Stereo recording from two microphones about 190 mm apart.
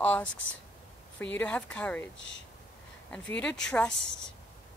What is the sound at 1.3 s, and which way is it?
Speech, 5° left (ahead or behind).